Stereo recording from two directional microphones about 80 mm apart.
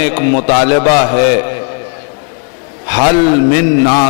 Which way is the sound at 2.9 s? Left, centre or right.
Centre.